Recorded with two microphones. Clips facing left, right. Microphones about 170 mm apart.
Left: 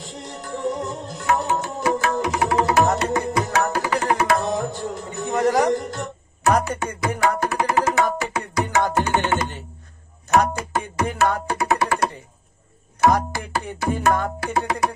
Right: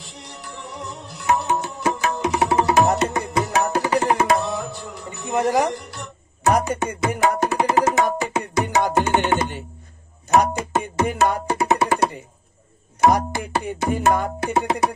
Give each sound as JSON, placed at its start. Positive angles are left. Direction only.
{"t": 0.0, "sound": "music", "side_deg": 45}
{"t": 1.8, "sound": "tabla", "side_deg": -25}
{"t": 4.6, "sound": "tabla", "side_deg": 45}
{"t": 5.7, "sound": "a man's voice", "side_deg": 45}
{"t": 6.4, "sound": "speech", "side_deg": -15}
{"t": 6.8, "sound": "music", "side_deg": -20}
{"t": 10.3, "sound": "tabla", "side_deg": -20}
{"t": 11.5, "sound": "music", "side_deg": -25}